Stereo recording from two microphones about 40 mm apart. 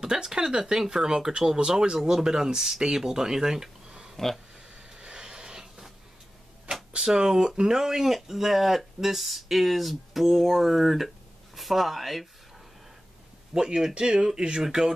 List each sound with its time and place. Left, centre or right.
0.0 s speech: centre
4.9 s a sound: centre
7.0 s speech: centre
13.5 s a man's voice: centre